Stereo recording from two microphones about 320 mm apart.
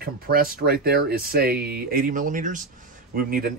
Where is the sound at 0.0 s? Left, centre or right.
Right.